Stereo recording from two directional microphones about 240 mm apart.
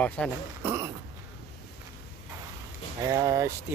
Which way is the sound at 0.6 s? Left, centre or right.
Centre.